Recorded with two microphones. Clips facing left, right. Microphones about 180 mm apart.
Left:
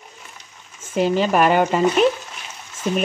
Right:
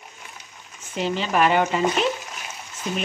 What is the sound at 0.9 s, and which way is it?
Speech, 45° left (ahead or behind).